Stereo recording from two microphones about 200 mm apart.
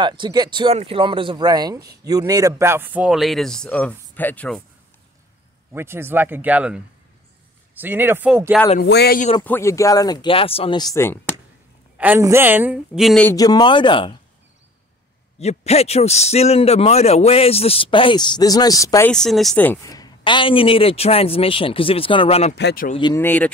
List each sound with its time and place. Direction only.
0.0 s speech: 25° right (ahead or behind); by 4.6 s 10° left (ahead or behind)
5.7 s speech: 10° right (ahead or behind)
8.8 s speech: 55° left (ahead or behind)
9.4 s speech: 10° left (ahead or behind)
12.0 s speech: 10° right (ahead or behind); by 13.4 s 5° left (ahead or behind)
13.4 s a man's voice: 20° left (ahead or behind)
15.3 s a man's voice: 30° left (ahead or behind); by 19.1 s 15° left (ahead or behind)
19.1 s a man's voice: centre (ahead or behind); by 22.6 s 30° left (ahead or behind)
22.6 s speech: 60° left (ahead or behind)
22.9 s a man's voice: 20° left (ahead or behind)
23.2 s speech: 5° left (ahead or behind)